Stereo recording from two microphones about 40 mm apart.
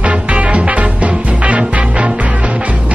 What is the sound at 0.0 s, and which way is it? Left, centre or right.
Music, right.